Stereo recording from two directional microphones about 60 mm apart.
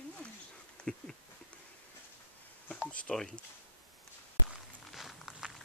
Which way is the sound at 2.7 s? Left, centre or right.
Left.